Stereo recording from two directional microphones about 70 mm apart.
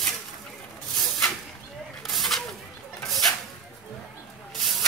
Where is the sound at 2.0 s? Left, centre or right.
Centre.